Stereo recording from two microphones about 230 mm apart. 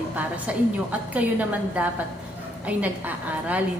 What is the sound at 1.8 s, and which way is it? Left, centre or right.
A woman's voice, centre.